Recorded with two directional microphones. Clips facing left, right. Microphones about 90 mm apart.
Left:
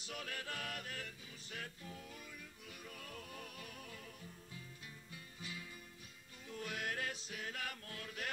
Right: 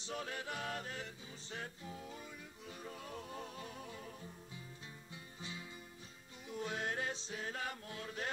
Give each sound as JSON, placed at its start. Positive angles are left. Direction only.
{"t": 0.0, "sound": "music", "side_deg": -25}